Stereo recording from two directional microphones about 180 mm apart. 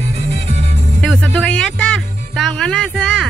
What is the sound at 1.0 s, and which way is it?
Music, centre (ahead or behind).